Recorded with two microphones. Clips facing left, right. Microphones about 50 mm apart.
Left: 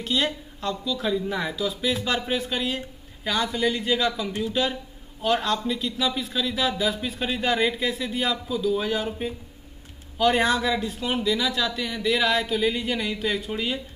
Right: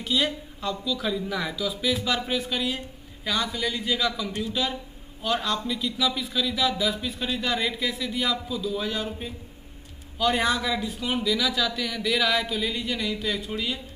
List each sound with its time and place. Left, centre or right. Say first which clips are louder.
0.1 s speech: even; centre; by 13.4 s left